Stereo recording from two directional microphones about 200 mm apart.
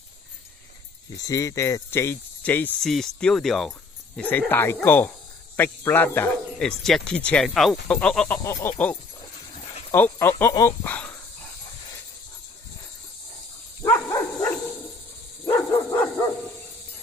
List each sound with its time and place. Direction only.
1.2 s speech: 15° left (ahead or behind)
9.2 s a sound: 30° left (ahead or behind)
9.8 s speech: 10° left (ahead or behind)
13.8 s dog: 15° left (ahead or behind)